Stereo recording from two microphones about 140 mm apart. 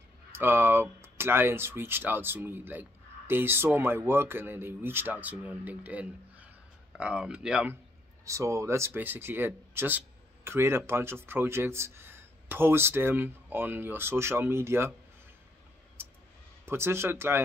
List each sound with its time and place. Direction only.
0.3 s speech: 15° right (ahead or behind)
8.3 s speech: 20° right (ahead or behind)
16.6 s speech: 20° right (ahead or behind)